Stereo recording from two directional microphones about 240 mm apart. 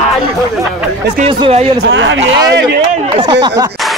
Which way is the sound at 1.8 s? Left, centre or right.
Right.